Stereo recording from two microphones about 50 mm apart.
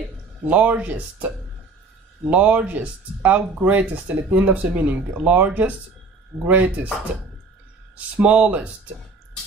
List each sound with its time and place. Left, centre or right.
0.5 s speech: right
2.2 s speech: right
7.9 s speech: right